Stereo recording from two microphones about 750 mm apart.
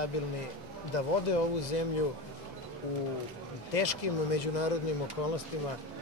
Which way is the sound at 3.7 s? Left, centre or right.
Left.